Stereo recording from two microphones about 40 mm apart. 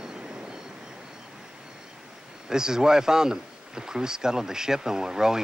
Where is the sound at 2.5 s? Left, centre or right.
Centre.